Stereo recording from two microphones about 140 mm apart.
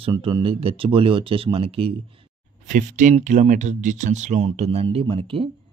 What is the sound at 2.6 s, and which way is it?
Speech, 65° right (ahead or behind).